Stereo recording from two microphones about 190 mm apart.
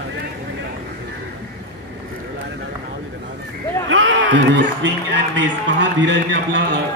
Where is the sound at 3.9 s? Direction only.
85° right.